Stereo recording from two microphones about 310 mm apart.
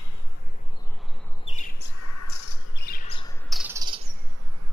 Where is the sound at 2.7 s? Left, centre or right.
Left.